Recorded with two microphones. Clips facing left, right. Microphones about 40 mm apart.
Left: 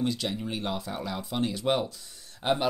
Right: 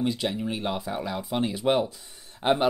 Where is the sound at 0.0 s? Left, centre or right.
Centre.